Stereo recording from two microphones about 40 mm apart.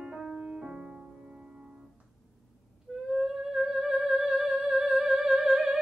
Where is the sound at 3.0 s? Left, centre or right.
Centre.